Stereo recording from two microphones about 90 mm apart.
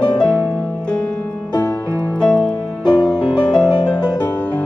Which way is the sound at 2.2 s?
10° left (ahead or behind).